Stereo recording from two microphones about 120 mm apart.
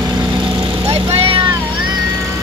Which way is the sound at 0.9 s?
55° right (ahead or behind).